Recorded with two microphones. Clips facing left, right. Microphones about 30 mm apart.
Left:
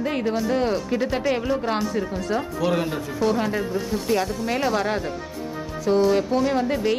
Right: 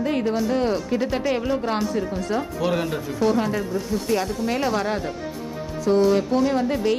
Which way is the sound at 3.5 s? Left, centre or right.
Centre.